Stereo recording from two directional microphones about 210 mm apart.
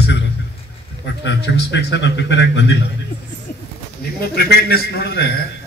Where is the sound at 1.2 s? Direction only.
55° left (ahead or behind).